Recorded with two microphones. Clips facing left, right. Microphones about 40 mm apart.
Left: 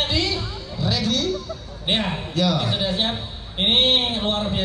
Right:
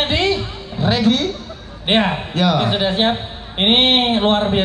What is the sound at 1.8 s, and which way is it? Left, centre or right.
A man's voice, right.